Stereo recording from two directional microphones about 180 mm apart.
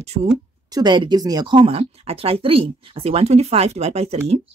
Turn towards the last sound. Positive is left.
turn(degrees=-35)  # may be behind; listen again after turning